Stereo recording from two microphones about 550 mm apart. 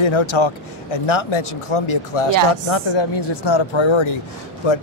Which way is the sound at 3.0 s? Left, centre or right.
Left.